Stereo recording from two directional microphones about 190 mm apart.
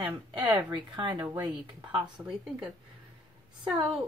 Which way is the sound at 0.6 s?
25° right (ahead or behind).